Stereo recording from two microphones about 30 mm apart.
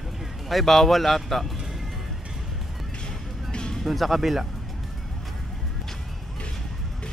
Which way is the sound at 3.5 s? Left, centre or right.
Left.